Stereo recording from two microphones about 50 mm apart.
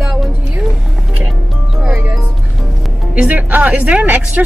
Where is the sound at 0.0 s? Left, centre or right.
Centre.